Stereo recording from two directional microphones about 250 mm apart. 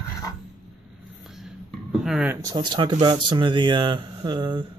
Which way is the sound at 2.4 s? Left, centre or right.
Centre.